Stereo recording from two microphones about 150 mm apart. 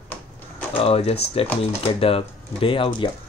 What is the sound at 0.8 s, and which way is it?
Speech, 40° left (ahead or behind).